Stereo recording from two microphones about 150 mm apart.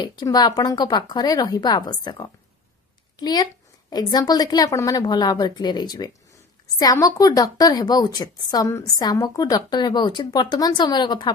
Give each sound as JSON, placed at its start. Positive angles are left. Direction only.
{"t": 0.0, "sound": "a woman's voice", "side_deg": 25}